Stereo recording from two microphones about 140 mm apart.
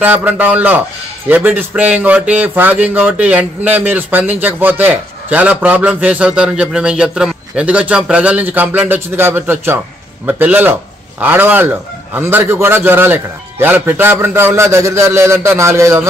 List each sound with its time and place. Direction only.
0.0 s speech: 10° right (ahead or behind)